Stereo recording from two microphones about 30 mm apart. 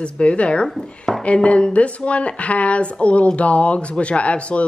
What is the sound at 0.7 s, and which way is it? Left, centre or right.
Speech, centre.